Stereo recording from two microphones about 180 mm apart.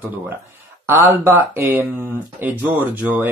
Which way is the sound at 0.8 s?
15° right (ahead or behind).